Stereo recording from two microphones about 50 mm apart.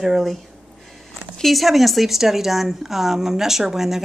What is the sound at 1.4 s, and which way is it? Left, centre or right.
Speech, centre.